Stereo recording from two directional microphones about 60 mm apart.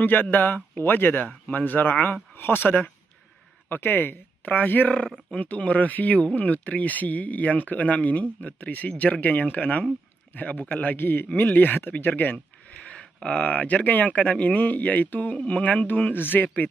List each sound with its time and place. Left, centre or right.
0.0 s speech: left
12.7 s speech: centre; by 16.4 s left